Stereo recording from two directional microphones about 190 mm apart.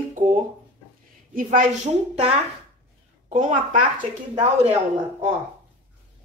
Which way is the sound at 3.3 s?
40° right (ahead or behind).